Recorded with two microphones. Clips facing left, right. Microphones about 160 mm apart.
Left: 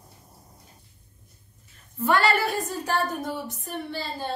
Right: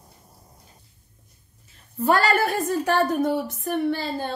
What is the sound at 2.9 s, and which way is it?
A woman's voice, 65° right (ahead or behind).